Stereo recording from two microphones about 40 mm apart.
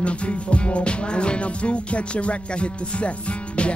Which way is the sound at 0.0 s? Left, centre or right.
Left.